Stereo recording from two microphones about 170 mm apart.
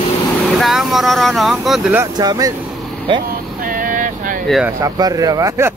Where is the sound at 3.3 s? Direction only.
55° right (ahead or behind).